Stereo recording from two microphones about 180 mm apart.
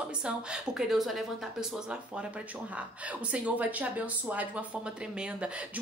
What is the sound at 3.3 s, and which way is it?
A woman's voice, 10° right (ahead or behind).